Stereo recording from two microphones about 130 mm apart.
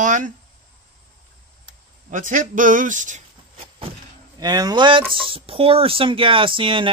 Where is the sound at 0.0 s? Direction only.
80° right.